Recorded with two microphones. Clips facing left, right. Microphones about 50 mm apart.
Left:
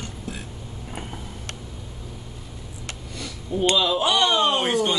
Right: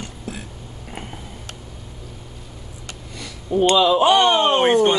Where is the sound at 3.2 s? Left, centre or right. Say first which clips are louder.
Right 6 dB; right.